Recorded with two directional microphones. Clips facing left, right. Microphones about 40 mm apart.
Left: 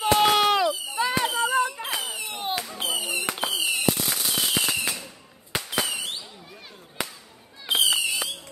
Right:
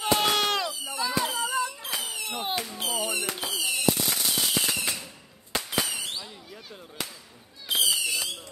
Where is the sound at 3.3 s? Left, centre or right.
Left.